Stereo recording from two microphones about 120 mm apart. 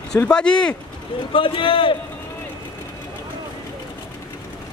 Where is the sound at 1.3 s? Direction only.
45° left (ahead or behind).